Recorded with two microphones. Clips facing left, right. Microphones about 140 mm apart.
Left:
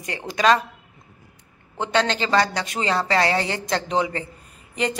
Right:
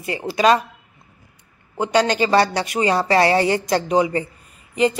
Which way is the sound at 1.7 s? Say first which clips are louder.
Right 4 dB; 10° right (ahead or behind).